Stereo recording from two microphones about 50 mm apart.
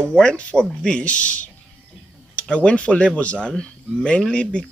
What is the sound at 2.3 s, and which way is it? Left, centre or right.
Speech, left.